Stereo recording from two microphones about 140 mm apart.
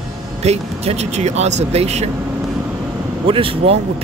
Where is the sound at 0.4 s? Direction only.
50° right (ahead or behind).